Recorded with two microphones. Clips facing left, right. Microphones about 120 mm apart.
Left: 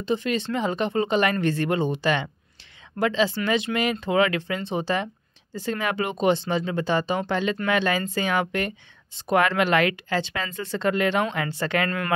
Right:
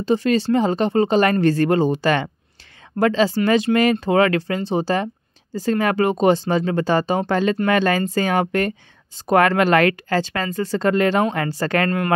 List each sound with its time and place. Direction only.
0.0 s speech: 40° right (ahead or behind)